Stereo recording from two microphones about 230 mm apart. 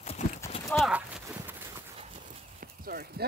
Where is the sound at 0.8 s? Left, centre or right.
Centre.